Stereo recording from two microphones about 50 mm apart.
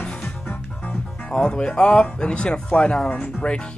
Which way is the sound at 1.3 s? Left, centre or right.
Centre.